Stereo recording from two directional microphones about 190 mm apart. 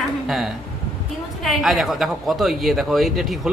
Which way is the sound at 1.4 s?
Centre (ahead or behind).